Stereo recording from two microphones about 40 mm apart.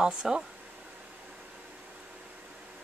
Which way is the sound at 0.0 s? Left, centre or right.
Centre.